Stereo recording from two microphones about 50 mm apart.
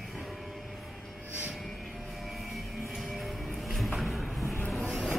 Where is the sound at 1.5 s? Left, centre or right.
Centre.